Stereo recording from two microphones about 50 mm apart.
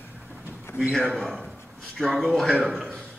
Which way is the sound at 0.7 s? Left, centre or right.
Left.